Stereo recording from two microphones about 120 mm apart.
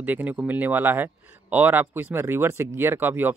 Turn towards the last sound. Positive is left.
turn(degrees=-15)  # may be behind; listen again after turning